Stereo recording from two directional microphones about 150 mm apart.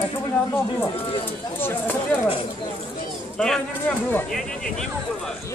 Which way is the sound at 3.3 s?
5° left (ahead or behind).